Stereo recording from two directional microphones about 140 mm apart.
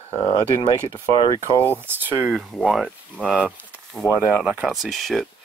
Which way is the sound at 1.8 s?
15° right (ahead or behind).